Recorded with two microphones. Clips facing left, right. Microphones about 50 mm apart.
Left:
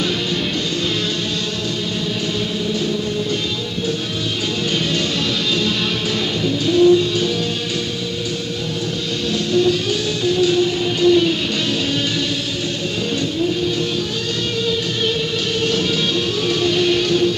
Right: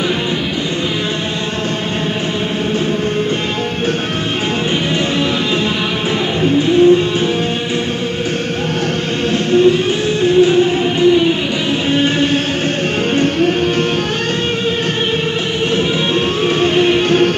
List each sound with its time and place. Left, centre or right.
6.4 s music: right
9.5 s music: right
13.1 s music: right
16.8 s music: right